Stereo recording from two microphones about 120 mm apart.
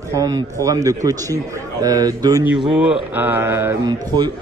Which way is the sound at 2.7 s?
10° right (ahead or behind).